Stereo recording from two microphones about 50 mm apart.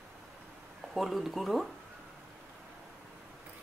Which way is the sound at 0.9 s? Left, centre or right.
Centre.